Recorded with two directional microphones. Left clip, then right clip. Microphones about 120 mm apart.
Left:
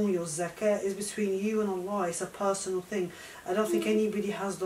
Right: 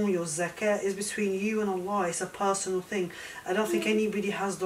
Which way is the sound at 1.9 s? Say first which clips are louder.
Right 2 dB; 5° left (ahead or behind).